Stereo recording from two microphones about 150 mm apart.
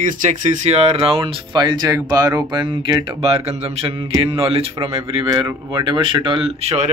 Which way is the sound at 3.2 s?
40° right (ahead or behind).